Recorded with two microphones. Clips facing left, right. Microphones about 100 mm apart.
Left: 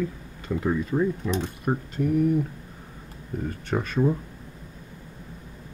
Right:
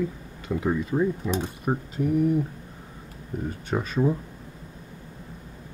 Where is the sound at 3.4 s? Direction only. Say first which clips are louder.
Even; 5° right (ahead or behind).